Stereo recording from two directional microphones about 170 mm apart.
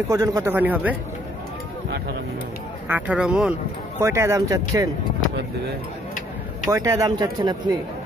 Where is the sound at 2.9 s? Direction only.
5° right (ahead or behind).